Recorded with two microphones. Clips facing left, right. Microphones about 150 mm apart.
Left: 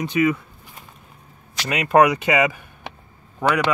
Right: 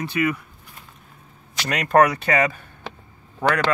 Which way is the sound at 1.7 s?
10° left (ahead or behind).